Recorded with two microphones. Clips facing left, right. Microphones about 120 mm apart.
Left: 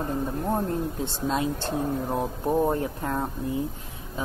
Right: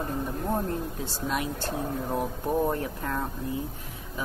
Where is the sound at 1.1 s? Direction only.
25° left (ahead or behind).